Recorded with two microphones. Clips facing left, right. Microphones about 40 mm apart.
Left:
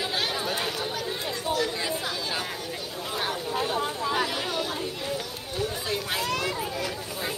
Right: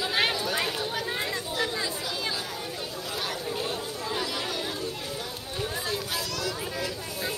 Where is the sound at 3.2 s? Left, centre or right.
Left.